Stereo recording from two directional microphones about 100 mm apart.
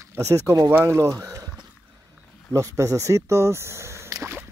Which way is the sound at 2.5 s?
30° right (ahead or behind).